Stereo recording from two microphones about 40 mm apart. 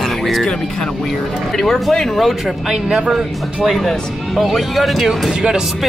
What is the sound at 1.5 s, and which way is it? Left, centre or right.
Speech, centre.